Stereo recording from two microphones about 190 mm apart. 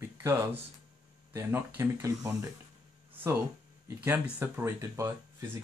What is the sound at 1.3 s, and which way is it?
Speech, 10° right (ahead or behind).